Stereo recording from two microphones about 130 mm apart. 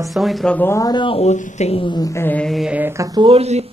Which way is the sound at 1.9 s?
30° left (ahead or behind).